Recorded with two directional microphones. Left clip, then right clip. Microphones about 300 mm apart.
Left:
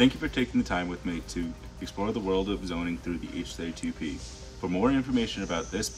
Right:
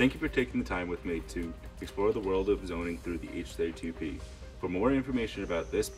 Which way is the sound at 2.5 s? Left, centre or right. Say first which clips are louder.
Right 1 dB; centre.